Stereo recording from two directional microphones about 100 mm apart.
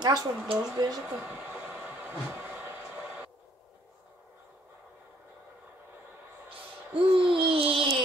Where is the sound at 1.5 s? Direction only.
15° right (ahead or behind).